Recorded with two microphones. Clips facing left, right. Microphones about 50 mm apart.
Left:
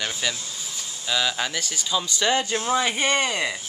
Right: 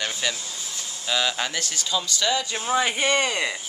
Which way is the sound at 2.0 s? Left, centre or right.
Left.